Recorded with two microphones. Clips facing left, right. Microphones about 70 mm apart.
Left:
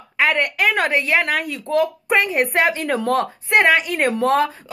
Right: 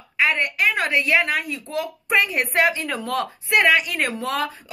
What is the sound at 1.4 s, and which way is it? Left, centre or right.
Speech, left.